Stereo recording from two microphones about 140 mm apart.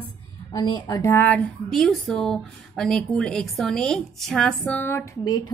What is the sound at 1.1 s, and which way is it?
Speech, 10° left (ahead or behind).